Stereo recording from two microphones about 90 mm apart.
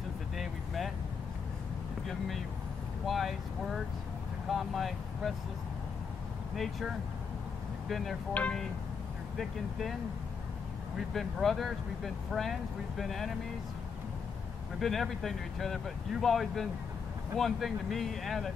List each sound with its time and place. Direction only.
0.4 s vehicle: centre (ahead or behind)
2.0 s speech: centre (ahead or behind)
6.5 s speech: centre (ahead or behind)
7.9 s speech: centre (ahead or behind)
8.3 s speech: 15° left (ahead or behind)
9.4 s speech: centre (ahead or behind)
11.0 s speech: centre (ahead or behind)
14.8 s speech: centre (ahead or behind)